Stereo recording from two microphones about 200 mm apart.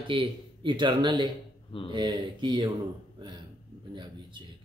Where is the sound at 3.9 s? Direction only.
25° right (ahead or behind).